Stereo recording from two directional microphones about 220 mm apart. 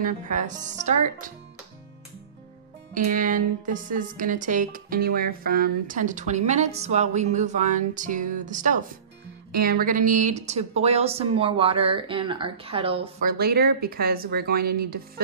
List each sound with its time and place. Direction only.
0.0 s a woman's voice: 35° right (ahead or behind)
2.9 s a woman's voice: 35° right (ahead or behind)
13.2 s speech: 45° right (ahead or behind)